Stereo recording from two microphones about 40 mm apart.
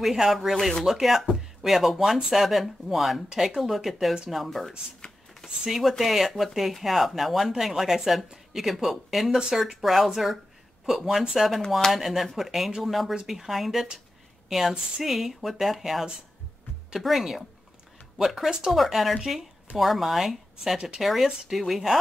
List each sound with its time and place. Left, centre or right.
0.0 s speech: centre
4.6 s a sound: centre
5.6 s speech: centre
11.3 s speech: centre
19.1 s speech: centre
19.8 s speech: centre
20.7 s speech: centre
21.0 s speech: centre